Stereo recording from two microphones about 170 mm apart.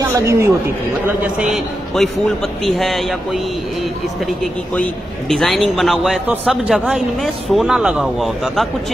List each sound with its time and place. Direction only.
0.0 s speech: 15° right (ahead or behind); by 3.2 s centre (ahead or behind)
5.3 s speech: centre (ahead or behind)